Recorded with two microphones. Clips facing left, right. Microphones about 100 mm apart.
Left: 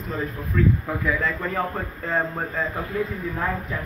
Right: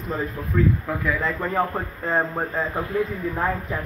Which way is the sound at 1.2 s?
20° right (ahead or behind).